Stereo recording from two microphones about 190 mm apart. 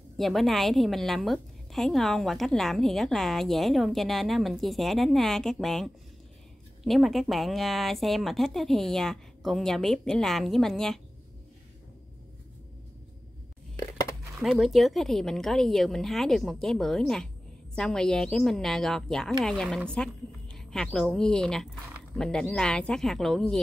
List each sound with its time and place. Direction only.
0.2 s a woman's voice: centre (ahead or behind)
14.4 s a woman's voice: centre (ahead or behind)